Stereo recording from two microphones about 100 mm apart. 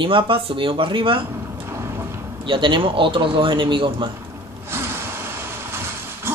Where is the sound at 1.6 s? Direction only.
30° right (ahead or behind).